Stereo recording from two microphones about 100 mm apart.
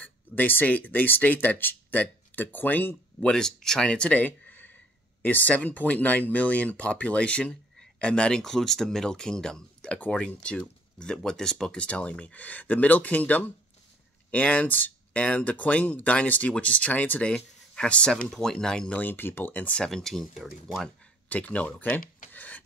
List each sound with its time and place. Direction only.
0.0 s speech: 20° left (ahead or behind)
3.3 s speech: 5° left (ahead or behind)
21.3 s speech: 15° left (ahead or behind)